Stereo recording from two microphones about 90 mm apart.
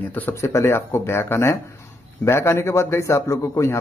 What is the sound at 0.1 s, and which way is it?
Speech, 25° left (ahead or behind).